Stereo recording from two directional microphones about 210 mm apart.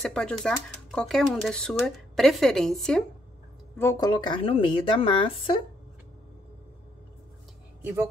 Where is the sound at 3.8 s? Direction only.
15° left (ahead or behind).